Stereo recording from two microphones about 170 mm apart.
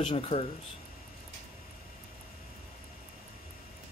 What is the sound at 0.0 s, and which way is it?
Speech, 35° left (ahead or behind).